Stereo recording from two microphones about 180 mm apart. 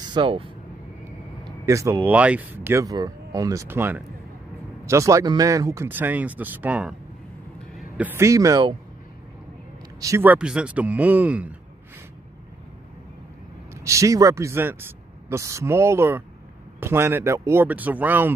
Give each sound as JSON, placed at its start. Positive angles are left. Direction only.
{"t": 0.0, "sound": "speech", "side_deg": -25}
{"t": 1.4, "sound": "a sound", "side_deg": -15}
{"t": 2.0, "sound": "speech", "side_deg": -10}
{"t": 9.9, "sound": "speech", "side_deg": -15}
{"t": 13.8, "sound": "speech", "side_deg": -15}